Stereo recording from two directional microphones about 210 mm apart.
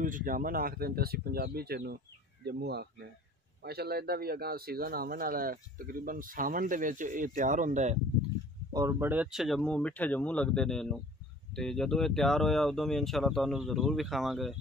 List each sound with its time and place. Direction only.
0.0 s speech: 40° right (ahead or behind)
8.7 s speech: 15° right (ahead or behind)